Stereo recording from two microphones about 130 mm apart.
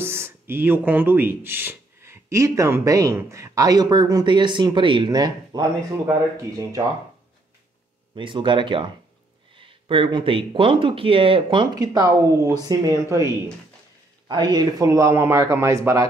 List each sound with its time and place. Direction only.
0.0 s speech: 20° right (ahead or behind)
8.2 s speech: 40° right (ahead or behind)
11.7 s speech: 30° right (ahead or behind)